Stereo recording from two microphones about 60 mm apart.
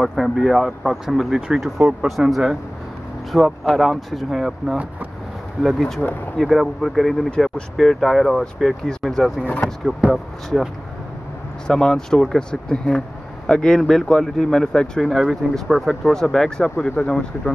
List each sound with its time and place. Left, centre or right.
0.0 s speech: centre
2.0 s speech: centre
10.0 s speech: centre
11.6 s speech: centre
17.0 s speech: left